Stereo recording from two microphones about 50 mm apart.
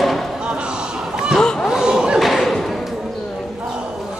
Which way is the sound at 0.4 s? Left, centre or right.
Centre.